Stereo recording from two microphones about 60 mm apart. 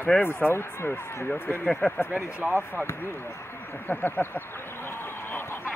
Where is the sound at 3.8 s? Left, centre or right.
Left.